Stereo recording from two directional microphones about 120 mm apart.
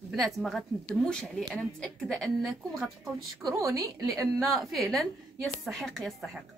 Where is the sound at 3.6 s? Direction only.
30° right (ahead or behind).